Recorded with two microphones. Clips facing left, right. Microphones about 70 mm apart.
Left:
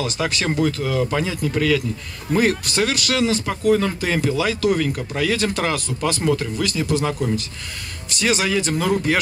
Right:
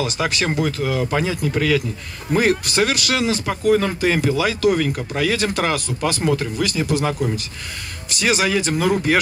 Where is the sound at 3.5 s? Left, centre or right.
Right.